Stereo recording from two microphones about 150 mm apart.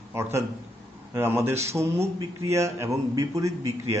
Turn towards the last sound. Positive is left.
turn(degrees=-20)  # may be behind; listen again after turning